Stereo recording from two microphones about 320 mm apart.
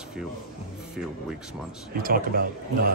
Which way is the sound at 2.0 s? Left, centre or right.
Right.